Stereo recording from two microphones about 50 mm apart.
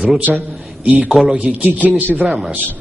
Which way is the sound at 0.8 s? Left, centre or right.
Right.